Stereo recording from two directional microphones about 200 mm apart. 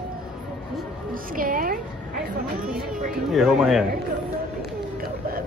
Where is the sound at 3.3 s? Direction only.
Centre (ahead or behind).